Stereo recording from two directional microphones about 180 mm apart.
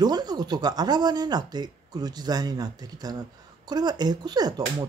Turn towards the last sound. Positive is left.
turn(degrees=-20)  # may be behind; listen again after turning